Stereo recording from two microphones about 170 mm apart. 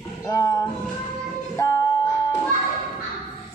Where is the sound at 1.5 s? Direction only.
15° left (ahead or behind).